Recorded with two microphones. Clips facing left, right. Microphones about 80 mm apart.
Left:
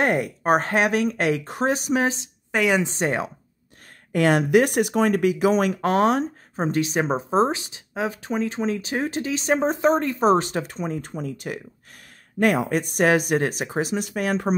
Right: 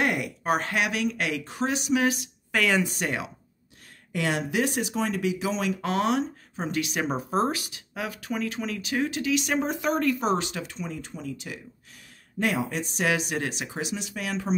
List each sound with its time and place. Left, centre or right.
0.0 s speech: left
4.1 s speech: left